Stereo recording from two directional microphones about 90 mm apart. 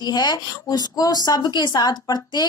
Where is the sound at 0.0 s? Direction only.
50° left (ahead or behind).